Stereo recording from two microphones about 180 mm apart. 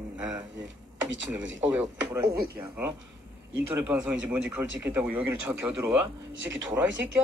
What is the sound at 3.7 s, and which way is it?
A man's voice, 5° right (ahead or behind).